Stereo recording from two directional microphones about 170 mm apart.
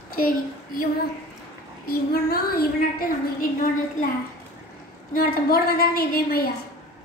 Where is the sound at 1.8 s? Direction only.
65° left (ahead or behind).